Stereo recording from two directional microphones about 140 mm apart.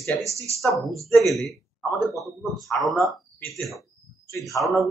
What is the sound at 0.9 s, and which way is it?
A man's voice, centre (ahead or behind).